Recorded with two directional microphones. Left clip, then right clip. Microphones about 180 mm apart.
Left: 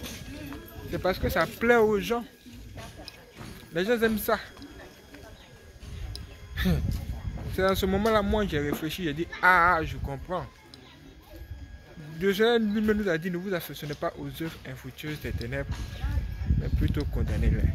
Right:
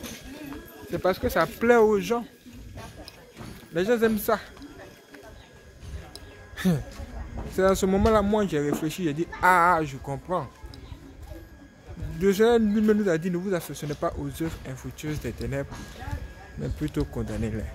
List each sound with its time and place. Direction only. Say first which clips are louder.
0.9 s speech: right 3 dB; 20° right (ahead or behind)
3.7 s speech: right 2 dB; 5° right (ahead or behind)
6.5 s a sound: right 2 dB; 10° right (ahead or behind)
7.5 s speech: right 3 dB; 10° right (ahead or behind)
12.2 s speech: right 3 dB; 10° right (ahead or behind)
17.1 s speech: right 2 dB; 10° right (ahead or behind)